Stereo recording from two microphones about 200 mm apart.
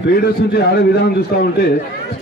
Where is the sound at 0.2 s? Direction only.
50° left (ahead or behind).